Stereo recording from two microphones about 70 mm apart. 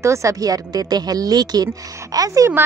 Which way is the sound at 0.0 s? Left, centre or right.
Right.